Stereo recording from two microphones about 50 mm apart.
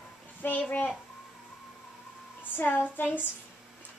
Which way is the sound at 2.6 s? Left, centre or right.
Left.